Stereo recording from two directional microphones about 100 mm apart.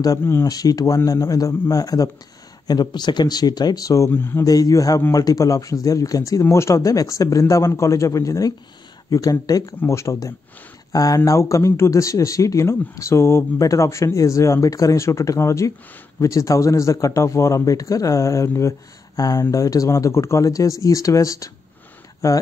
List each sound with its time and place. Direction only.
0.2 s speech: 25° left (ahead or behind)
0.5 s speech: 40° left (ahead or behind)
4.1 s speech: 20° left (ahead or behind)
4.5 s speech: 35° left (ahead or behind)